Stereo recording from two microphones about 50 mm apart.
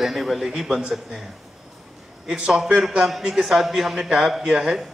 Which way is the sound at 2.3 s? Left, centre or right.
Centre.